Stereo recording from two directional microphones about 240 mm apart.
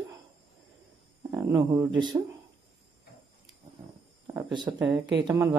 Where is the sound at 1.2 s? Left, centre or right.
Centre.